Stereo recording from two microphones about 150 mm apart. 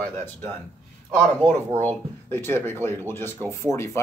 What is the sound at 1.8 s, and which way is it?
Speech, 15° left (ahead or behind).